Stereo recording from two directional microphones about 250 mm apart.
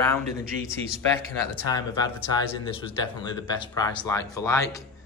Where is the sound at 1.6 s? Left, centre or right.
Centre.